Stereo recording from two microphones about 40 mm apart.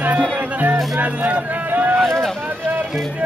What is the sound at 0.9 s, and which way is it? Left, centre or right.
Speech, right.